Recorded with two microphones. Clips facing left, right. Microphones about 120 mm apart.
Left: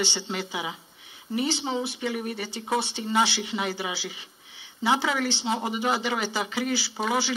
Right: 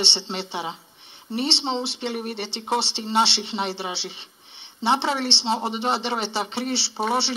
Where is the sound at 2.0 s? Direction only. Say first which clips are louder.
Right 1 dB; 35° right (ahead or behind).